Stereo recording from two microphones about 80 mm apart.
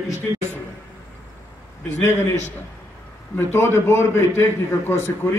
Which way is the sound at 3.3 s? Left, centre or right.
Left.